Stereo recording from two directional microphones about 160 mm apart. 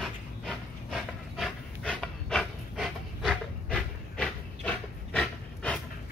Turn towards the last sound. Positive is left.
turn(degrees=5)  # may be behind; listen again after turning